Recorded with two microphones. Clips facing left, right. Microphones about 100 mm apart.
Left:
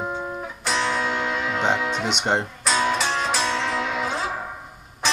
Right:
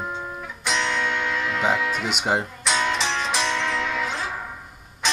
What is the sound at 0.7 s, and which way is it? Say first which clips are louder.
Music: left 1 dB; 35° left (ahead or behind).